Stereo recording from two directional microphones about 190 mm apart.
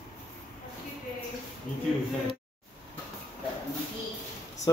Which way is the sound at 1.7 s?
40° left (ahead or behind).